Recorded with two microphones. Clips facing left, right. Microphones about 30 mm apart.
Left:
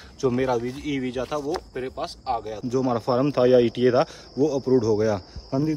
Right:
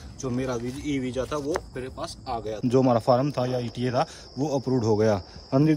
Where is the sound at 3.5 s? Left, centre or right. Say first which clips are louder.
Left 12 dB; left.